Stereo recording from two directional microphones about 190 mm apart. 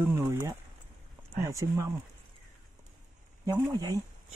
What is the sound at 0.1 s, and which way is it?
Speech, 15° right (ahead or behind).